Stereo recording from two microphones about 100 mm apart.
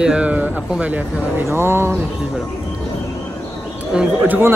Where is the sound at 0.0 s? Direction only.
10° right (ahead or behind).